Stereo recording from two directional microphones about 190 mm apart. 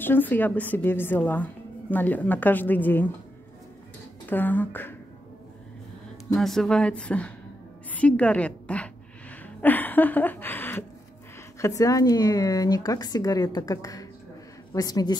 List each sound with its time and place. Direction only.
0.0 s speech: 10° left (ahead or behind)
4.3 s speech: 10° left (ahead or behind)
6.3 s a woman's voice: centre (ahead or behind)
9.6 s a sound: 10° left (ahead or behind)
11.6 s speech: 15° left (ahead or behind)